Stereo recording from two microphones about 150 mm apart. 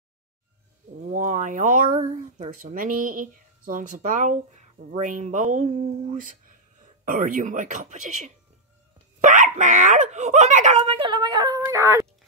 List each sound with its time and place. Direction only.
1.1 s a sound: 60° right (ahead or behind)
2.0 s speech: 55° right (ahead or behind)
7.1 s speech: 65° right (ahead or behind); by 12.1 s 20° right (ahead or behind)